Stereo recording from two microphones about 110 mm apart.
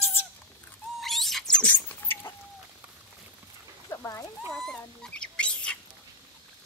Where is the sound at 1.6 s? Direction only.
20° left (ahead or behind).